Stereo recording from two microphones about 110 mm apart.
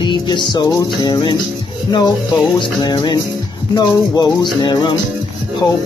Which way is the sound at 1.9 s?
40° left (ahead or behind).